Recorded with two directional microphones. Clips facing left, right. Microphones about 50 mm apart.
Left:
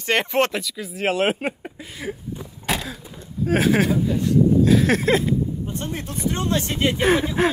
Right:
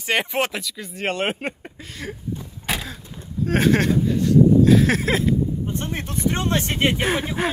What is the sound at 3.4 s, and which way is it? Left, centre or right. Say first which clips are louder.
Speech: even; centre.